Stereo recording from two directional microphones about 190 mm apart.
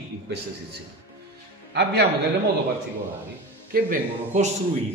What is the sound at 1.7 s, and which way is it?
Speech, 60° right (ahead or behind).